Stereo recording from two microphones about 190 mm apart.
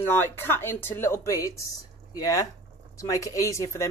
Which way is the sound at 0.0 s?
10° left (ahead or behind).